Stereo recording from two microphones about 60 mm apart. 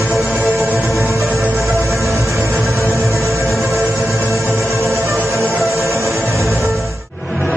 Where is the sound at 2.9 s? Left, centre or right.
Centre.